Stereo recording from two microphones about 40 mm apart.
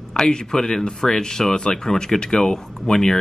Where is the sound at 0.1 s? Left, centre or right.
Centre.